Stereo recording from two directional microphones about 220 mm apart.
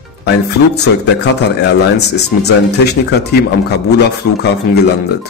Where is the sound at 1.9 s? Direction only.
50° left (ahead or behind).